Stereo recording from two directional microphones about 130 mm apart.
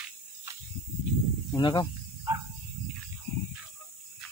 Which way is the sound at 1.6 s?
35° left (ahead or behind).